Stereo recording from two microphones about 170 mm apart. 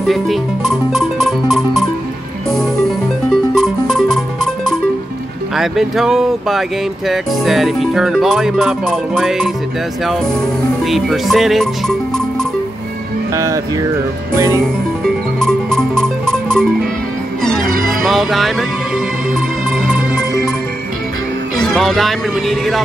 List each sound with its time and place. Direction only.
0.0 s music: centre (ahead or behind)
10.8 s speech: centre (ahead or behind)
13.3 s music: 20° right (ahead or behind)
14.3 s speech: 15° right (ahead or behind)
15.3 s music: 5° left (ahead or behind)
21.5 s music: 5° left (ahead or behind)